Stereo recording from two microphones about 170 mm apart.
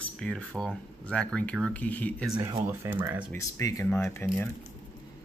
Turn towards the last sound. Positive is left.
turn(degrees=15)  # may be behind; listen again after turning